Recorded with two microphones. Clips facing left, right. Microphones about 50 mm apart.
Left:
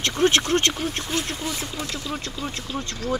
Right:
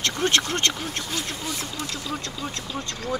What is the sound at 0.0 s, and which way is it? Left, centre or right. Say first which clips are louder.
Speech: left 3 dB; left.